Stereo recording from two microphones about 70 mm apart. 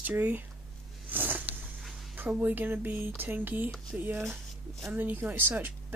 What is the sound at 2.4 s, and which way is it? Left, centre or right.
Speech, right.